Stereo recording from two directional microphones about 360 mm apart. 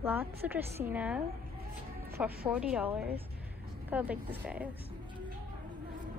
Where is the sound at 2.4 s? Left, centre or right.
Centre.